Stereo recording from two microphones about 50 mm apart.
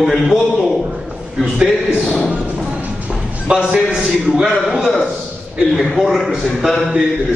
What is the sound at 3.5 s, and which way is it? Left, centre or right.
Speech, right.